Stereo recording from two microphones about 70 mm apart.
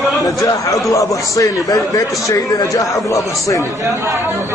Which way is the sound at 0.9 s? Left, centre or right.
Left.